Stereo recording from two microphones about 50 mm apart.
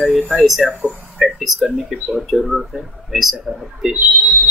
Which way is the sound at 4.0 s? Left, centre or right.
Right.